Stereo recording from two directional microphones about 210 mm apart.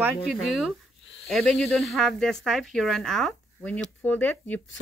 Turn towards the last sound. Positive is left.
turn(degrees=10)  # may be behind; listen again after turning